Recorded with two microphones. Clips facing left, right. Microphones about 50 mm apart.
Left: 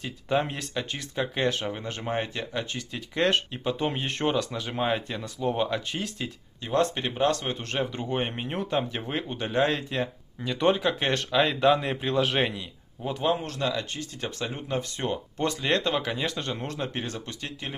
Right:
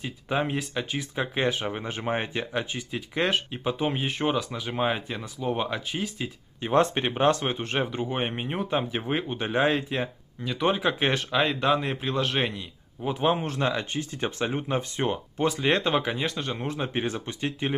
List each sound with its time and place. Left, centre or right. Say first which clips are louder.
0.0 s speech: left 1 dB; centre
6.6 s speech: right 3 dB; right; by 12.6 s centre
13.0 s speech: right 3 dB; centre
13.3 s speech: right 1 dB; right
15.3 s speech: right 2 dB; centre